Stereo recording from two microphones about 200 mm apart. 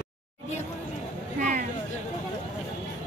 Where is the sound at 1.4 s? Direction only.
40° right (ahead or behind).